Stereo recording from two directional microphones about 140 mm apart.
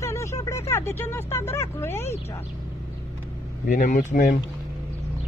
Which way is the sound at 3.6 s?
65° left (ahead or behind).